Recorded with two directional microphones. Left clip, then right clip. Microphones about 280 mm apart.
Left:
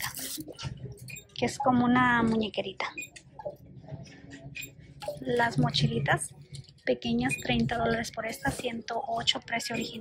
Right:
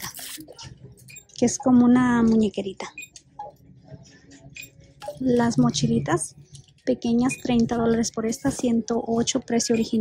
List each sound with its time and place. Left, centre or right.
1.4 s speech: right
5.2 s speech: centre